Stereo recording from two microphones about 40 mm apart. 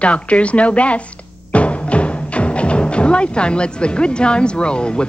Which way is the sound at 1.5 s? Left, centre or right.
Left.